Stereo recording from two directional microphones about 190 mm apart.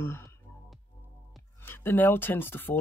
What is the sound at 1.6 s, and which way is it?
Speech, 10° left (ahead or behind).